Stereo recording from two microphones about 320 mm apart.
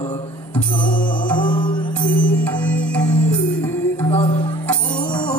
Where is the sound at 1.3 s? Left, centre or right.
Centre.